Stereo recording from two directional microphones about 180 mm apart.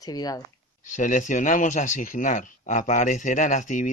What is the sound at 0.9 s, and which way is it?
Speech, 45° left (ahead or behind).